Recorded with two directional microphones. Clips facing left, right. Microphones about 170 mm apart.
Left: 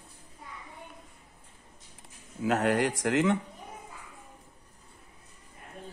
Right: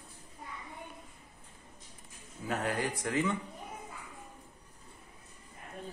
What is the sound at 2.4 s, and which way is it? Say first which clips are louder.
Speech: left 8 dB; 80° left.